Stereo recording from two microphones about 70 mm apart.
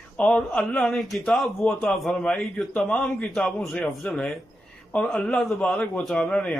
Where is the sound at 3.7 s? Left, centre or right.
Centre.